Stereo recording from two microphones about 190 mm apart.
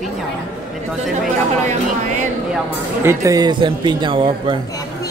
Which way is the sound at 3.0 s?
15° right (ahead or behind).